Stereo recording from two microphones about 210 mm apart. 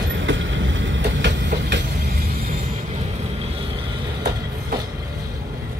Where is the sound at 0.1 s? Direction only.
65° right (ahead or behind); by 2.7 s 45° right (ahead or behind).